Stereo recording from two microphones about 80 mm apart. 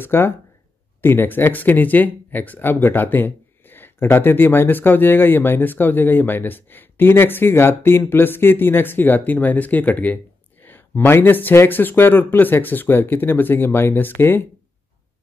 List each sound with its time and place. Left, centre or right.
0.0 s speech: left